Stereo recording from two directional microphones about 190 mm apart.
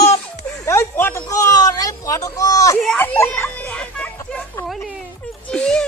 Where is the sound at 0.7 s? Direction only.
10° left (ahead or behind).